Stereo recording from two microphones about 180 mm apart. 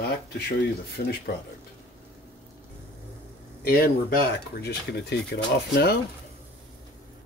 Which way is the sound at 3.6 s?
55° left (ahead or behind).